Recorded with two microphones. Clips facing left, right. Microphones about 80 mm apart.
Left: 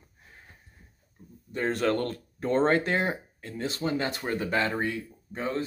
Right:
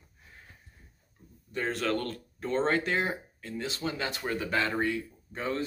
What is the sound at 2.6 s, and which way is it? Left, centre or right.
Speech, left.